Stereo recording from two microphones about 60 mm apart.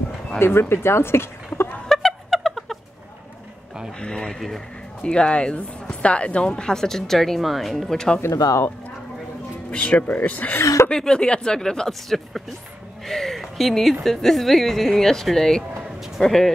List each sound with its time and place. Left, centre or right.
0.4 s speech: left
1.9 s a sound: centre
4.0 s speech: centre
8.2 s speech: left
9.7 s speech: left
10.6 s chuckle: left
10.9 s speech: centre
13.0 s a sound: centre
14.0 s speech: centre